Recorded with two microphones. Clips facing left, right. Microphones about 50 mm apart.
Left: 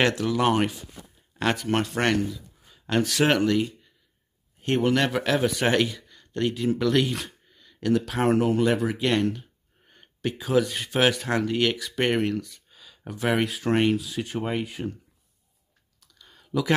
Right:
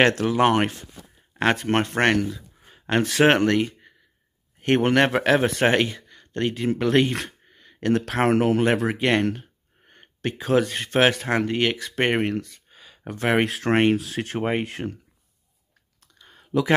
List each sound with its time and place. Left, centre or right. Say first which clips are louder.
0.1 s speech: right 3 dB; right
3.3 s speech: right 2 dB; right
7.2 s a sound: right 3 dB; right
8.0 s speech: right 4 dB; right
8.9 s speech: right 2 dB; right
13.5 s speech: right 3 dB; right
14.4 s speech: right 5 dB; right
14.7 s speech: right 2 dB; right
16.2 s a sound: right 4 dB; right